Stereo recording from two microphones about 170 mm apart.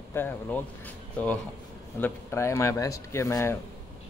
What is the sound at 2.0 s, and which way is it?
Speech, 15° left (ahead or behind).